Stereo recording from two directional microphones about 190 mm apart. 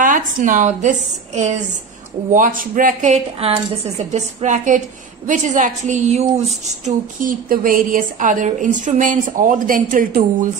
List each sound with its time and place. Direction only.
0.0 s a woman's voice: 45° right (ahead or behind)